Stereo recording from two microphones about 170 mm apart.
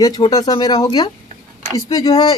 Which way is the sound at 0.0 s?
25° left (ahead or behind).